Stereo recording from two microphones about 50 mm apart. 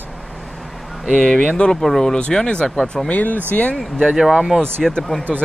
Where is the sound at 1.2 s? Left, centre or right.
Centre.